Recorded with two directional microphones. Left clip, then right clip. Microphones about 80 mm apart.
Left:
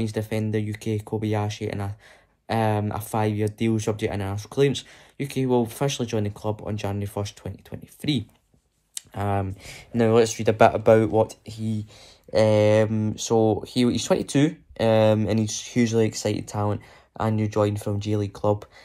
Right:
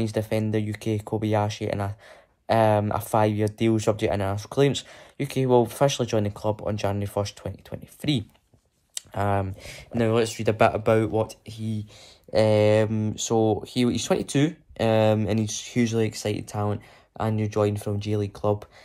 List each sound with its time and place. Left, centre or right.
0.0 s speech: right
8.9 s clicking: right
9.3 s speech: centre
9.9 s speech: right
10.8 s speech: centre; by 16.0 s right
16.0 s speech: centre